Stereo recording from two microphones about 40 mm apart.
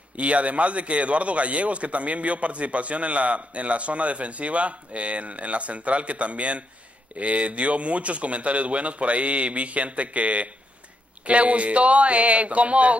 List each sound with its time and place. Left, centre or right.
0.2 s a man's voice: right